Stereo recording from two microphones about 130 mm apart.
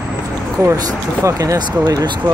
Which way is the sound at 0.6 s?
20° right (ahead or behind).